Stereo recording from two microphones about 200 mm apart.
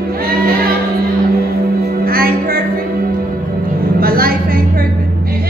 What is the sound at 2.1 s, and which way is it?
Music, 45° right (ahead or behind).